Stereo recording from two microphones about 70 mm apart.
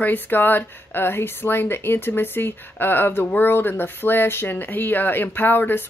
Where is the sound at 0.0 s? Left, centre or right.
Left.